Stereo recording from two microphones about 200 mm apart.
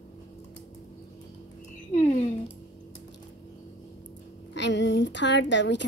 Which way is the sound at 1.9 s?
40° left (ahead or behind).